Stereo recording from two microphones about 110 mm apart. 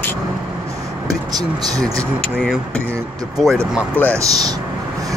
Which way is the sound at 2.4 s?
5° left (ahead or behind).